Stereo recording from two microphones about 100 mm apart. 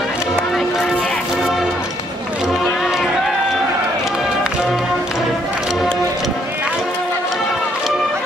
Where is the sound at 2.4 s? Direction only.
Centre (ahead or behind).